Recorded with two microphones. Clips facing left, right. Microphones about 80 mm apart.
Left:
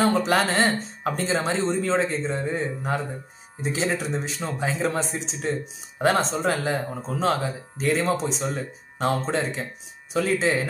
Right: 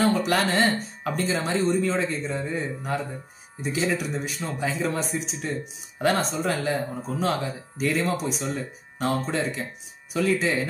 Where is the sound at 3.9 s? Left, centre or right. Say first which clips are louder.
Left 1 dB; left.